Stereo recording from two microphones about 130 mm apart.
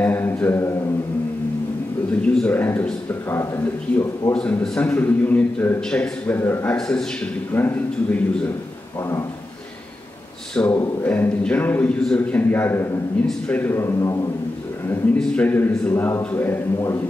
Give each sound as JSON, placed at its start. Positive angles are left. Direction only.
{"t": 0.0, "sound": "mantra", "side_deg": 15}
{"t": 2.2, "sound": "a man's voice", "side_deg": 10}
{"t": 10.5, "sound": "a man's voice", "side_deg": 15}
{"t": 15.1, "sound": "a man's voice", "side_deg": 10}